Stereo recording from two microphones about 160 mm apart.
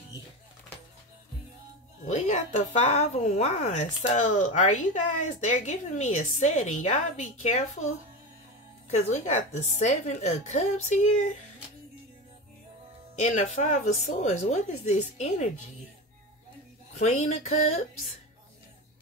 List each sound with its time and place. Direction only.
2.0 s a woman's voice: 50° left (ahead or behind)
8.9 s a woman's voice: 45° left (ahead or behind)
13.2 s a woman's voice: 50° left (ahead or behind)
16.9 s a woman's voice: 45° left (ahead or behind)